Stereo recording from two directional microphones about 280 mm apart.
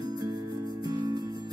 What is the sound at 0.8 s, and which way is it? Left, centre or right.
Music, centre.